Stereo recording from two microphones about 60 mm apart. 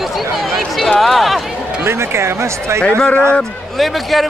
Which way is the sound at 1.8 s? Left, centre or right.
Right.